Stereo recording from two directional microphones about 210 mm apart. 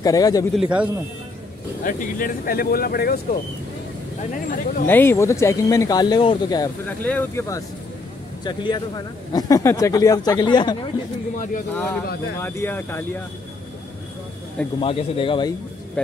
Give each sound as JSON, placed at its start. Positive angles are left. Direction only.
{"t": 0.0, "sound": "speech", "side_deg": 15}
{"t": 0.6, "sound": "a man's voice", "side_deg": -5}
{"t": 1.9, "sound": "speech", "side_deg": 40}
{"t": 4.3, "sound": "speech", "side_deg": 40}
{"t": 4.8, "sound": "speech", "side_deg": 10}
{"t": 11.3, "sound": "speech", "side_deg": 40}
{"t": 11.7, "sound": "speech", "side_deg": 10}
{"t": 14.8, "sound": "speech", "side_deg": 25}